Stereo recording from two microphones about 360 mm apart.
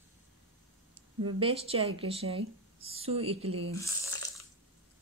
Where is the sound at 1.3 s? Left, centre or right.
Centre.